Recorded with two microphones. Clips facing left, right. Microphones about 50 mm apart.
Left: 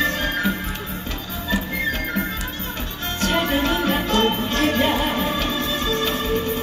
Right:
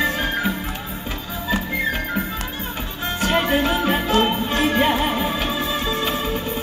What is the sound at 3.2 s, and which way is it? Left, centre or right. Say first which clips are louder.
Music: right 1 dB; centre.